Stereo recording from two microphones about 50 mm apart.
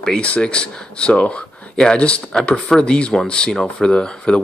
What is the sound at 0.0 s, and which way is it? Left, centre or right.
Speech, centre.